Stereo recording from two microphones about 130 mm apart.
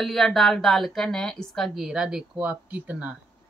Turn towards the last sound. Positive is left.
turn(degrees=-10)  # may be behind; listen again after turning